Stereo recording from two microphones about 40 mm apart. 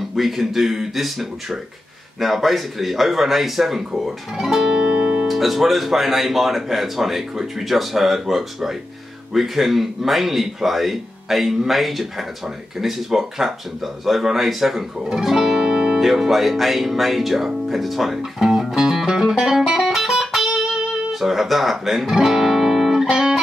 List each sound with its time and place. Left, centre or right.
0.1 s speech: centre; by 5.3 s right
5.3 s speech: centre
15.2 s music: centre
16.0 s speech: centre
18.5 s music: centre